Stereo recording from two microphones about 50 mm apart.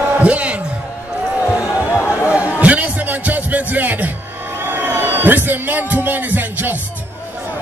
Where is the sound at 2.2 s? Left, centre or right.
Right.